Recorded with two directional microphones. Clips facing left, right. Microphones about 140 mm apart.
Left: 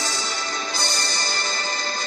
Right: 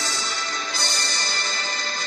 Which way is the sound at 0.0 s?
40° left (ahead or behind).